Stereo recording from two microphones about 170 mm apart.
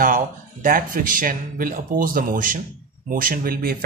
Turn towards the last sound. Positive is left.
turn(degrees=-60)  # may be behind; listen again after turning